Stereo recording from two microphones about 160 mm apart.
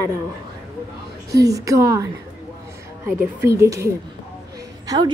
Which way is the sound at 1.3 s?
20° right (ahead or behind).